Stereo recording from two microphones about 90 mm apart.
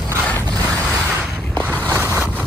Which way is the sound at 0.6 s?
15° left (ahead or behind).